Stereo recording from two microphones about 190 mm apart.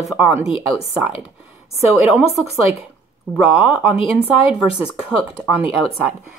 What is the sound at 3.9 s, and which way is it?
Speech, 30° left (ahead or behind).